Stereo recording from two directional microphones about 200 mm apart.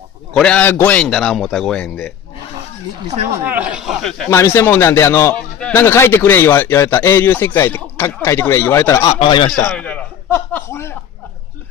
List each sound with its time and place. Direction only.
0.3 s a man's voice: 5° left (ahead or behind)
3.4 s a man's voice: 5° right (ahead or behind)
4.3 s a man's voice: 15° left (ahead or behind)
9.2 s a man's voice: 25° left (ahead or behind)
9.7 s a man's voice: 5° left (ahead or behind)